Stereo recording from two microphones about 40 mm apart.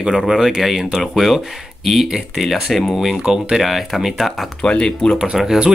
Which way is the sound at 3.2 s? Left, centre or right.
Centre.